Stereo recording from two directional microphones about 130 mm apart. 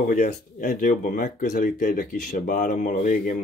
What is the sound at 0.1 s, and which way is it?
Speech, 70° left (ahead or behind).